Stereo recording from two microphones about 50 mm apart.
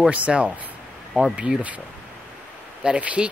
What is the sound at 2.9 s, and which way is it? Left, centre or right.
Speech, right.